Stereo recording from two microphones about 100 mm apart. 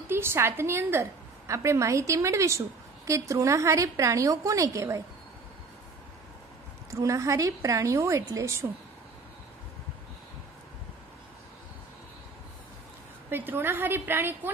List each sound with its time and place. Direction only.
0.1 s a woman's voice: 25° right (ahead or behind)
6.9 s a woman's voice: 30° right (ahead or behind)
13.3 s a woman's voice: 20° right (ahead or behind)